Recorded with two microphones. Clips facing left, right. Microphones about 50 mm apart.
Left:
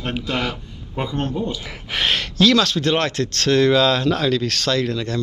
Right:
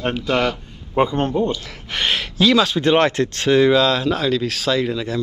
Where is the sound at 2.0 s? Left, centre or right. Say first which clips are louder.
Left 1 dB; centre.